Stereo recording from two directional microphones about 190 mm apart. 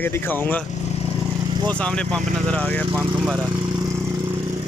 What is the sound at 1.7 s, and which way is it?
Speech, 5° left (ahead or behind).